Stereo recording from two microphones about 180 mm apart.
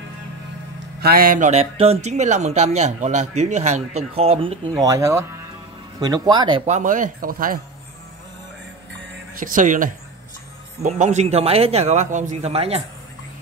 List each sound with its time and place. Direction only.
1.0 s speech: 55° right (ahead or behind)
1.5 s speech: 35° right (ahead or behind)
4.7 s speech: 20° right (ahead or behind)
6.7 s speech: 45° right (ahead or behind)
9.4 s speech: 45° right (ahead or behind)